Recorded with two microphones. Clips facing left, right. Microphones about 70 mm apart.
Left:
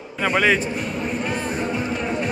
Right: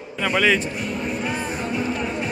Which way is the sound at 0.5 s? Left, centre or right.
Centre.